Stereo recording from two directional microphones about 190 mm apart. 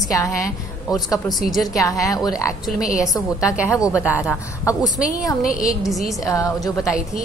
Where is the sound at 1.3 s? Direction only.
Centre (ahead or behind).